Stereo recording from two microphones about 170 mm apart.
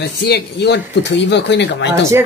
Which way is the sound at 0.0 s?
75° left (ahead or behind).